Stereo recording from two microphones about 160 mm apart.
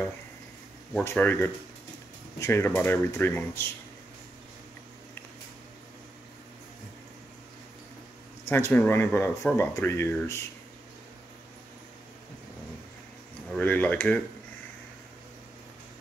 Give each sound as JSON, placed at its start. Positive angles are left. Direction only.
{"t": 1.0, "sound": "speech", "side_deg": 10}
{"t": 8.5, "sound": "speech", "side_deg": 15}
{"t": 13.5, "sound": "speech", "side_deg": 10}